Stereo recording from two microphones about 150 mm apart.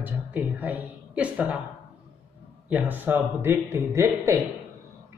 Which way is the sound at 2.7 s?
10° right (ahead or behind).